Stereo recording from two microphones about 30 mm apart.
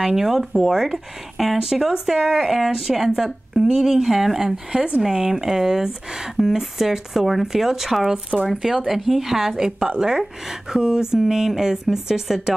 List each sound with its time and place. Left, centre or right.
0.1 s speech: centre
9.5 s a woman's voice: centre